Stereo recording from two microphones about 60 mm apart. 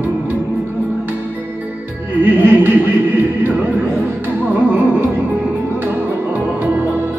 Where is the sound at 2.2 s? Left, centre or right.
Right.